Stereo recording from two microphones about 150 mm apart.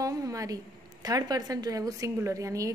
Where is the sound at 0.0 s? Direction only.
20° right (ahead or behind).